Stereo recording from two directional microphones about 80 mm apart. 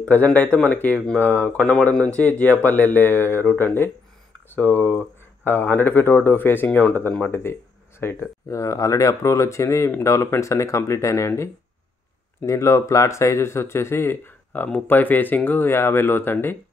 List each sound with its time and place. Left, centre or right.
0.1 s speech: centre
1.6 s speech: centre